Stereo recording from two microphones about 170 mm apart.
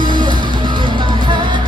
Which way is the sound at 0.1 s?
25° right (ahead or behind).